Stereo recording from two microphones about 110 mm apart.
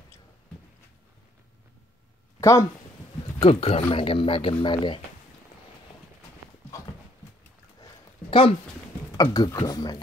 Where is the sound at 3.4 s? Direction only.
65° left (ahead or behind); by 5.0 s 45° left (ahead or behind).